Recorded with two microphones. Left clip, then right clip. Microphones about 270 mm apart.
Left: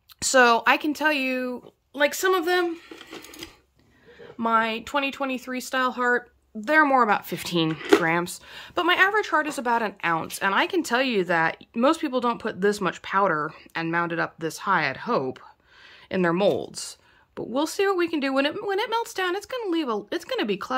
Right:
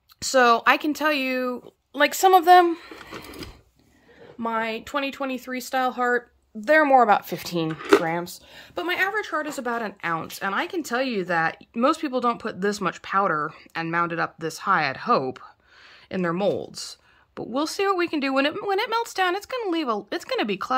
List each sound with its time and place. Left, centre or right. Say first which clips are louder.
0.2 s speech: even; centre
4.4 s speech: left 4 dB; centre